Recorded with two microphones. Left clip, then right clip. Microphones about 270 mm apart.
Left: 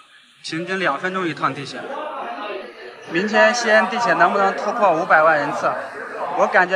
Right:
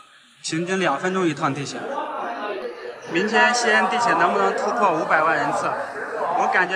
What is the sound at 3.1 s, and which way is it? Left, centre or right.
A man's voice, centre.